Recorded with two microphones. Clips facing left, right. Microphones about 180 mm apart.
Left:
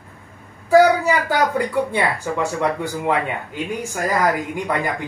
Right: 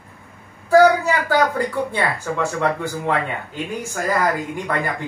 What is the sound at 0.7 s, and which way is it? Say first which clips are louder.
Speech: even; 15° left (ahead or behind).